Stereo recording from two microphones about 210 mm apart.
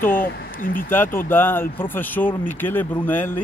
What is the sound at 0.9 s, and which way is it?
Speech, 10° left (ahead or behind).